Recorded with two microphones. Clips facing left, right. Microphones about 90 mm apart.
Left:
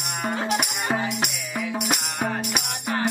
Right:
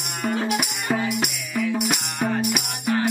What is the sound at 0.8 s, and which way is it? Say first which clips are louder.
Music: right 3 dB; 35° left (ahead or behind).